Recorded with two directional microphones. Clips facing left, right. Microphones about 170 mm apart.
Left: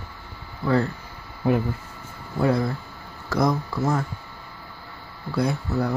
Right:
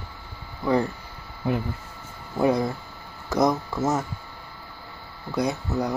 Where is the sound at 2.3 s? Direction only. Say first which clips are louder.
Even; 20° right (ahead or behind).